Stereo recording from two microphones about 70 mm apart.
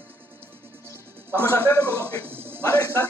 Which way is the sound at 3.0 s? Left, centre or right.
Left.